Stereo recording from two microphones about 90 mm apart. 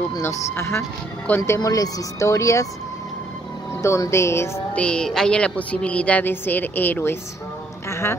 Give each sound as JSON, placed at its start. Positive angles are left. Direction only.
{"t": 0.2, "sound": "speech", "side_deg": 30}
{"t": 3.8, "sound": "speech", "side_deg": 35}
{"t": 4.7, "sound": "speech", "side_deg": 10}